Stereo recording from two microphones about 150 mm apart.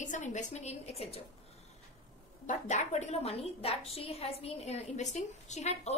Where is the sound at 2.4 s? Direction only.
50° left (ahead or behind).